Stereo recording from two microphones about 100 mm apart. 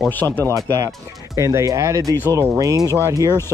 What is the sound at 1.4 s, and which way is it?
Speech, 30° right (ahead or behind).